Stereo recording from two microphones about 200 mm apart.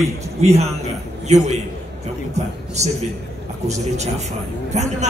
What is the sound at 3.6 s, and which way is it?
A man's voice, 35° right (ahead or behind).